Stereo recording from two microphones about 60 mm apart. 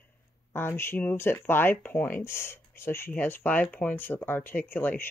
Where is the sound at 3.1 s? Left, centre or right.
Left.